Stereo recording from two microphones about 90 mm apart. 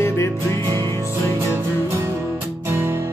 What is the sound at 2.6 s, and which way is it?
Music, 25° right (ahead or behind).